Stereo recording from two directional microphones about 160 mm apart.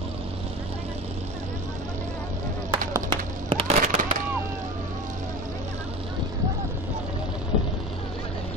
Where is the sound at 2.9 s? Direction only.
30° right (ahead or behind).